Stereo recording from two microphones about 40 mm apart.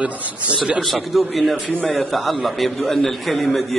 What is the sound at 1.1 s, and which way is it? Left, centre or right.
A man's voice, centre.